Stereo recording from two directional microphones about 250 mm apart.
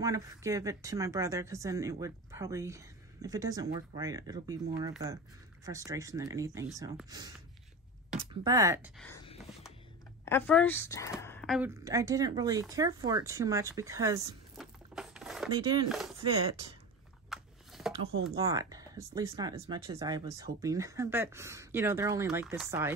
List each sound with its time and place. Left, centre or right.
0.0 s speech: centre
8.9 s speech: centre
9.2 s a sound: left
10.2 s a woman's voice: centre
11.8 s speech: centre
14.6 s a sound: centre
15.5 s speech: centre
15.9 s speech: centre
17.3 s a sound: centre
18.3 s speech: centre